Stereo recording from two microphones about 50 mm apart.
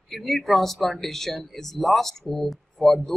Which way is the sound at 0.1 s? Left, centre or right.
Centre.